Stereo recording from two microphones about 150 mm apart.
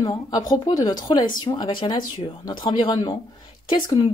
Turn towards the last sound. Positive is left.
turn(degrees=30)  # may be behind; listen again after turning